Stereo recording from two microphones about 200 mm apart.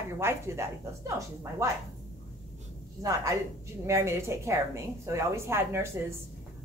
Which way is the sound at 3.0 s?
15° right (ahead or behind).